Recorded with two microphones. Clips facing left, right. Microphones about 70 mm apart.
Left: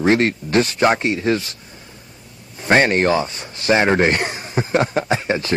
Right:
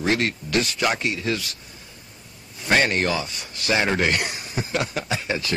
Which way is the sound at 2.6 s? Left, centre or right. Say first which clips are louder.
Left 6 dB; left.